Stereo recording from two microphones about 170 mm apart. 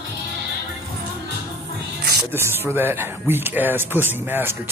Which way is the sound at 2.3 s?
15° right (ahead or behind).